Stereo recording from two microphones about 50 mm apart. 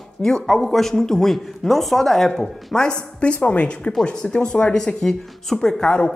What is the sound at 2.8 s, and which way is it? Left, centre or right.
A woman's voice, left.